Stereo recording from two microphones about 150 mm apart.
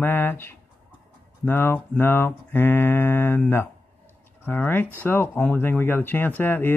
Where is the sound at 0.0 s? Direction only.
15° left (ahead or behind).